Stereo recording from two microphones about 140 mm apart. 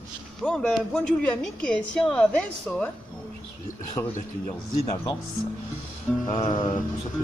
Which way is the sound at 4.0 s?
25° left (ahead or behind).